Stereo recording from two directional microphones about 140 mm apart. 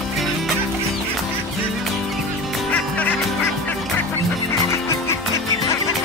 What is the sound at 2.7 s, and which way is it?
Fowl, 10° left (ahead or behind).